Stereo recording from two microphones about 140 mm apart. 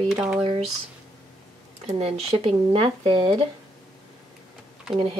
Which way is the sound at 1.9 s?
50° right (ahead or behind).